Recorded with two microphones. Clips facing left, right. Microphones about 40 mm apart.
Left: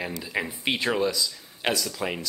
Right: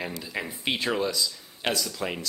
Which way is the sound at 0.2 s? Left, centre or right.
Centre.